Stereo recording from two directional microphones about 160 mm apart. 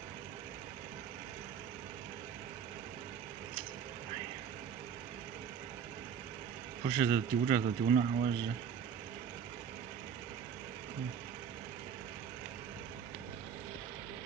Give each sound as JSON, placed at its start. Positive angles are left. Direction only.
{"t": 6.8, "sound": "speech", "side_deg": -45}